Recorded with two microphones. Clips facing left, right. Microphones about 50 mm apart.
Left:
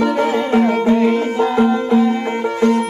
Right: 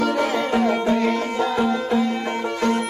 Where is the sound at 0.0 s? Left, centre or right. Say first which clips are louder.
Left 4 dB; left.